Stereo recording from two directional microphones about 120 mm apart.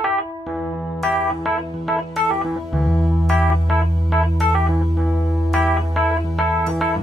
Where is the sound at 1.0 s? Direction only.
Centre (ahead or behind).